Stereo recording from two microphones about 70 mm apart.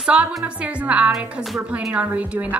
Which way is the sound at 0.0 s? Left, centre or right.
Centre.